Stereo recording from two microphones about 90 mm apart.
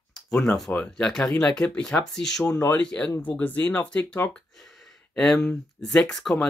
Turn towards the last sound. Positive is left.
turn(degrees=5)  # may be behind; listen again after turning